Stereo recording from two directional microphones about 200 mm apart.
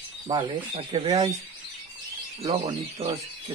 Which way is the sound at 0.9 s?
20° right (ahead or behind).